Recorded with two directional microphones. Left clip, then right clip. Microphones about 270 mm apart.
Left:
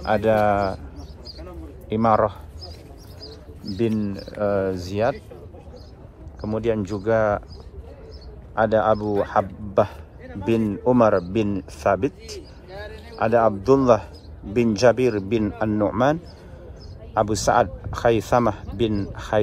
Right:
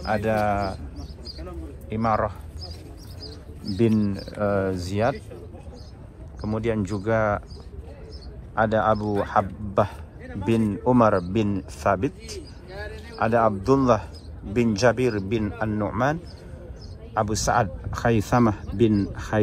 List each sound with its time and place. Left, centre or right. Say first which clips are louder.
0.0 s a man's voice: left 5 dB; centre
1.4 s a sound: even; left
2.0 s a man's voice: left 5 dB; centre
3.2 s a sound: left 1 dB; left
4.4 s a man's voice: left 2 dB; centre
6.4 s a man's voice: left 3 dB; centre
8.5 s a man's voice: left 2 dB; centre
12.7 s a sound: even; left
13.2 s a man's voice: left 2 dB; centre